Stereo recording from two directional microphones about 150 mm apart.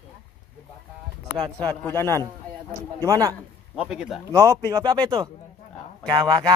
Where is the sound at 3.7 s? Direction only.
5° right (ahead or behind).